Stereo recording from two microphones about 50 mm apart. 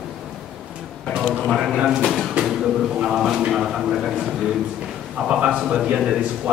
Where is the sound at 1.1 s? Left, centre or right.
Centre.